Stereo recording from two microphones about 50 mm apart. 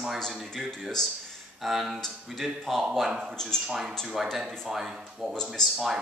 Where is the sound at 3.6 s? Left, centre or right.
Centre.